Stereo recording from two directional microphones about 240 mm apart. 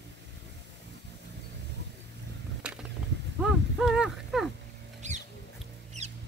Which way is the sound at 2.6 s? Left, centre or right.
Centre.